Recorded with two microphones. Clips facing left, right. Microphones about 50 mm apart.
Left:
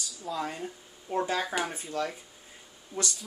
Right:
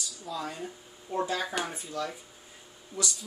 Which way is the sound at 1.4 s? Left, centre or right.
Centre.